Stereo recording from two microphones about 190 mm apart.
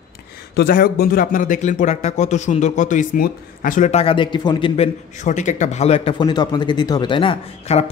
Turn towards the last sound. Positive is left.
turn(degrees=30)  # may be behind; listen again after turning